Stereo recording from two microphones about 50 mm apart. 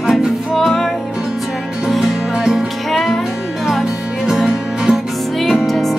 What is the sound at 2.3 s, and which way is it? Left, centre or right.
Music, centre.